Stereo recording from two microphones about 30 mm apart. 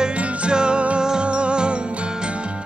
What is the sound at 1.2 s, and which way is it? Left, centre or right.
Music, right.